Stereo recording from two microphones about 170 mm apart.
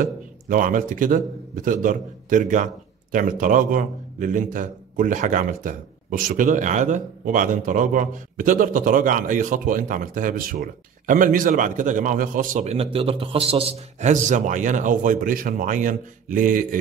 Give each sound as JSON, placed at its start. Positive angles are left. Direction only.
{"t": 0.0, "sound": "a man's voice", "side_deg": -50}
{"t": 12.6, "sound": "a man's voice", "side_deg": -35}